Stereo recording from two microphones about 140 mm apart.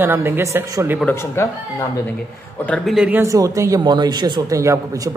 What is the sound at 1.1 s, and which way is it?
Speech, 20° left (ahead or behind).